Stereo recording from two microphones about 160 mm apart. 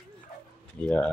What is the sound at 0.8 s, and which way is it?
Speech, 10° left (ahead or behind).